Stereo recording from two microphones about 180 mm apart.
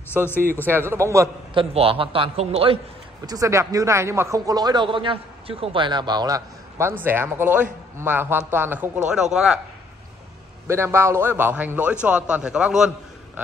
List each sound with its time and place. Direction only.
0.7 s a man's voice: 15° right (ahead or behind)
1.5 s a man's voice: 30° right (ahead or behind)
3.3 s a man's voice: 15° right (ahead or behind)
10.7 s a man's voice: 15° right (ahead or behind)